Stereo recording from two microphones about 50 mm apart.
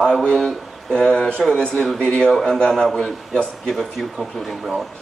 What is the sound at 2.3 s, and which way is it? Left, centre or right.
Speech, centre.